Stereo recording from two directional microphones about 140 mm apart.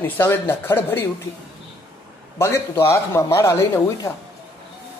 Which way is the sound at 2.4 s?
15° left (ahead or behind).